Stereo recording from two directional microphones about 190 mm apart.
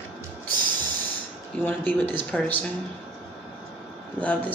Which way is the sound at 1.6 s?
10° left (ahead or behind).